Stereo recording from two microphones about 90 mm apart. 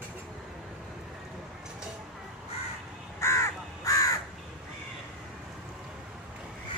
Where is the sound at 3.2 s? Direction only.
30° left (ahead or behind).